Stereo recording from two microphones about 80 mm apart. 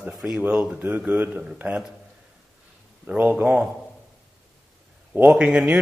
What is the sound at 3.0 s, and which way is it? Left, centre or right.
Speech, right.